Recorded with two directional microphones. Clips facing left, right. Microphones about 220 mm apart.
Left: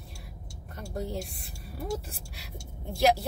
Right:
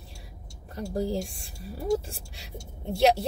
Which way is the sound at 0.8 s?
30° right (ahead or behind).